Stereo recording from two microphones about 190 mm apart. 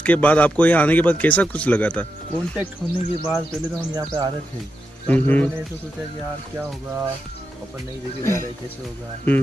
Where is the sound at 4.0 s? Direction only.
20° right (ahead or behind).